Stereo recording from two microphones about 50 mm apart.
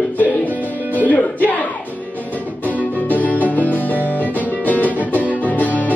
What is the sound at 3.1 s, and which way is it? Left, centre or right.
Music, left.